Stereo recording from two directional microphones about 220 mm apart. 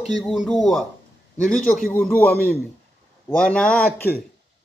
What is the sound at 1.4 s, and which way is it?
Speech, 40° left (ahead or behind).